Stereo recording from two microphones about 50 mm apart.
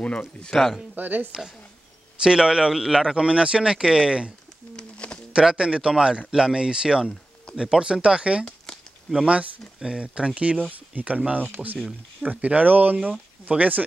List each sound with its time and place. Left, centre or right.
0.5 s speech: centre
0.9 s speech: right
2.1 s speech: centre
4.7 s bird: centre
5.3 s speech: centre